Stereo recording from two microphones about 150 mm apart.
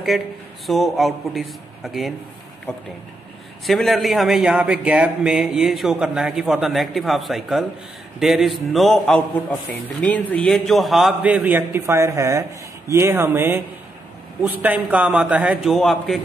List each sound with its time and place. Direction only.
0.7 s a man's voice: centre (ahead or behind)
3.6 s a man's voice: centre (ahead or behind)